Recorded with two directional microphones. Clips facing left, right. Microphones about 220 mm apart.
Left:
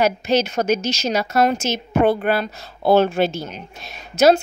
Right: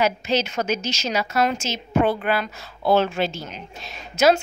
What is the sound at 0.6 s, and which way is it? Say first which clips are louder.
A woman's voice: left 5 dB; 35° left (ahead or behind).